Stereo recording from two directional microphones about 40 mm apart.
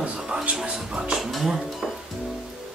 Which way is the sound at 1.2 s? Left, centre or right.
Centre.